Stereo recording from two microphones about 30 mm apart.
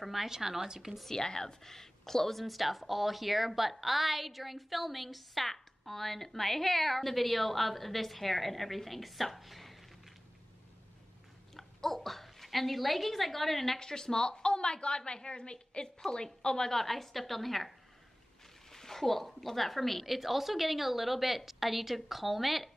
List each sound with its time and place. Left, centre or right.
0.0 s a woman's voice: centre
1.0 s a woman's voice: centre
11.5 s a child's voice: centre
13.7 s a woman's voice: left
16.8 s a woman's voice: centre